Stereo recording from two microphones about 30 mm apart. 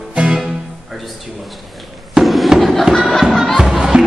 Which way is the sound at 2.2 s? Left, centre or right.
Centre.